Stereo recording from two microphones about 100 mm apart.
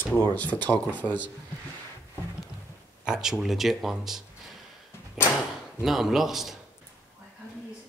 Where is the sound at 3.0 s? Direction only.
5° right (ahead or behind).